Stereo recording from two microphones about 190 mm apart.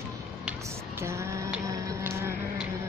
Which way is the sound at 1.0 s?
15° right (ahead or behind).